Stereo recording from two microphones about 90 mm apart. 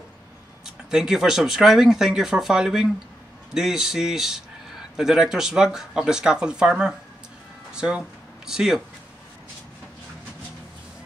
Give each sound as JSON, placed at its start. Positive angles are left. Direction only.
{"t": 0.7, "sound": "speech", "side_deg": -5}